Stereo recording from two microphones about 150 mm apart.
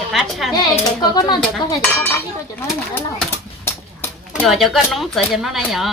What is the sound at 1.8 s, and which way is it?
Speech, 15° left (ahead or behind).